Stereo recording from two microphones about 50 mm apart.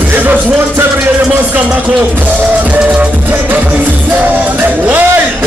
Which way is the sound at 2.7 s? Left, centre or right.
Right.